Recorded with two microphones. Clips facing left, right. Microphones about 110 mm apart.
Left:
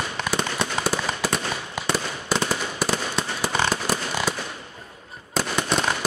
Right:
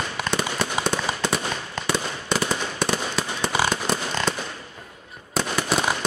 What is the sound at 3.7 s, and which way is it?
Fireworks, 5° left (ahead or behind).